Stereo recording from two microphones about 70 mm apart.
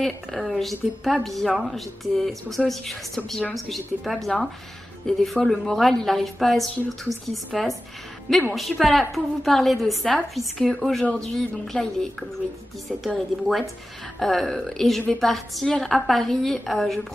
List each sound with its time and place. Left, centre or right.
0.0 s a woman's voice: centre